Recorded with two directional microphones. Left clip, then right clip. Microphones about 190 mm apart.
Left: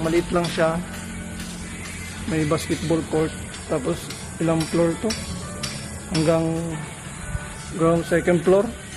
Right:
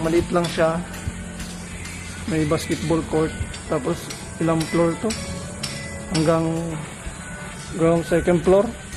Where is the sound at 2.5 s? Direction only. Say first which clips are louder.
Even; 10° right (ahead or behind).